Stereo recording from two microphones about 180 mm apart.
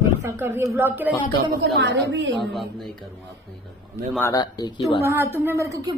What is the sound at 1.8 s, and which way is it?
Speech, 75° right (ahead or behind).